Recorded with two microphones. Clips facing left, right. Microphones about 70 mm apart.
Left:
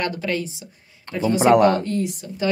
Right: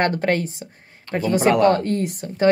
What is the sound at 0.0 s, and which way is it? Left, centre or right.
A woman's voice, right.